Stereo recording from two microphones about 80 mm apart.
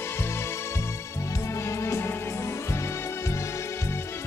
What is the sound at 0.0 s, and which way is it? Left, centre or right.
Music, left.